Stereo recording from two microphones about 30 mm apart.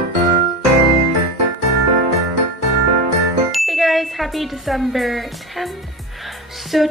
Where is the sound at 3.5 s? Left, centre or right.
Centre.